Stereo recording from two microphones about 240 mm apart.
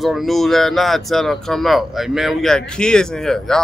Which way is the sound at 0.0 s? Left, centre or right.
Centre.